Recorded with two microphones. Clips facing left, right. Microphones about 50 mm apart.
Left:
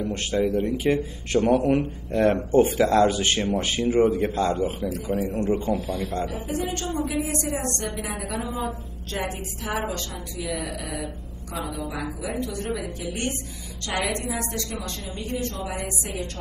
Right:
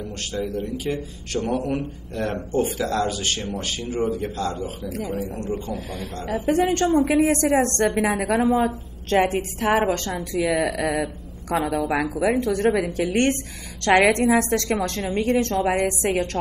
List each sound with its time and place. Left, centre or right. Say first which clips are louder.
0.0 s a man's voice: left 5 dB; left
4.8 s a woman's voice: even; right
5.1 s a man's voice: left 3 dB; left
5.8 s a woman's voice: left 4 dB; right
7.9 s a woman's voice: right 9 dB; right
8.5 s a woman's voice: right 7 dB; right
12.6 s a woman's voice: right 9 dB; right
13.1 s a woman's voice: right 10 dB; right
15.1 s a woman's voice: right 11 dB; right
15.6 s a woman's voice: right 10 dB; right